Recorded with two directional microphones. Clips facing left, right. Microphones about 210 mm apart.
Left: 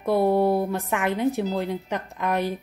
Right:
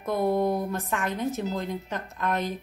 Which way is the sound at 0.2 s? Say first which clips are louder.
Left 2 dB; 10° left (ahead or behind).